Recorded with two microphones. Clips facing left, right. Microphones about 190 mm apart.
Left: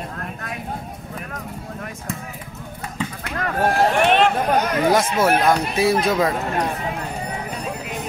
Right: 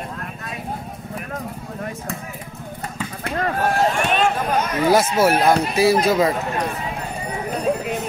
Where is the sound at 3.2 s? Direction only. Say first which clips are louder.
Right 6 dB; 30° right (ahead or behind).